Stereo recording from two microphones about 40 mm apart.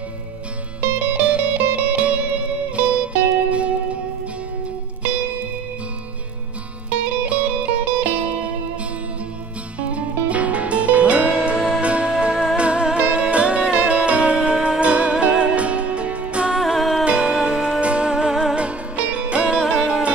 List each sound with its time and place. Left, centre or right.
0.7 s music: right
1.2 s music: right
7.2 s music: right
9.8 s music: right
16.5 s music: centre
17.0 s music: right
19.6 s music: centre